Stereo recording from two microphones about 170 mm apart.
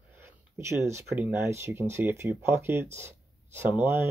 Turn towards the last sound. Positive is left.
turn(degrees=-15)  # may be behind; listen again after turning